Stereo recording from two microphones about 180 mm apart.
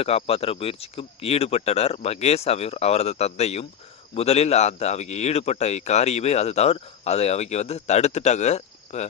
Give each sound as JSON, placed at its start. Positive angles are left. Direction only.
{"t": 0.0, "sound": "a man's voice", "side_deg": 35}